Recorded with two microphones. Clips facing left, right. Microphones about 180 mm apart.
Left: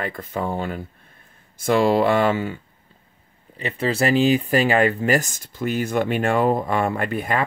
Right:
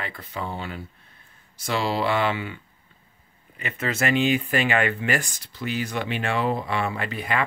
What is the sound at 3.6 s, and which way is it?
Speech, 35° left (ahead or behind).